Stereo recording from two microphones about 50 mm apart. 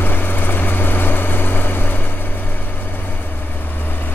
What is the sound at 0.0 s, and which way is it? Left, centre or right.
Vehicle, left.